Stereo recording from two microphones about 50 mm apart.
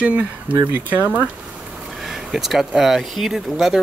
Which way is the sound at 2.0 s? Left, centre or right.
Centre.